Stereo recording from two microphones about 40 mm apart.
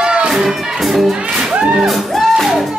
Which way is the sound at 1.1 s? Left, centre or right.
Centre.